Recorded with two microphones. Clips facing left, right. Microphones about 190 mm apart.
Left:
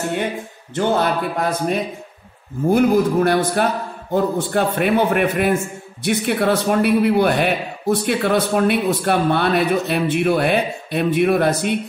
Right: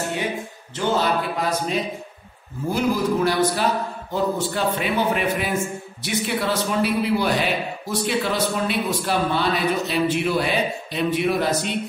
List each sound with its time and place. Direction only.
0.7 s a man's voice: 55° left (ahead or behind)